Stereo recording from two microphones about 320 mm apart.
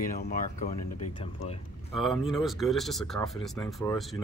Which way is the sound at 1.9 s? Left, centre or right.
Centre.